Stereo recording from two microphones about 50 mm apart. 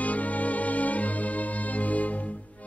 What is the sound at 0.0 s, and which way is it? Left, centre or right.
Music, left.